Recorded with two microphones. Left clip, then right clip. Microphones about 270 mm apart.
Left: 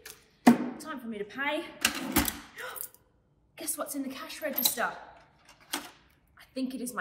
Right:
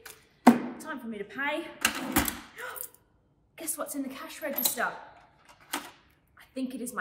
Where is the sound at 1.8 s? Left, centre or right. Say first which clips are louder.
Right 2 dB; centre.